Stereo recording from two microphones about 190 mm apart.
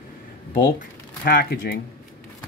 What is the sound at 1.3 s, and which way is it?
Speech, 55° left (ahead or behind).